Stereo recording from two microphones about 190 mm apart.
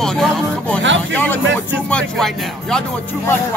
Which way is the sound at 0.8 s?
75° right (ahead or behind).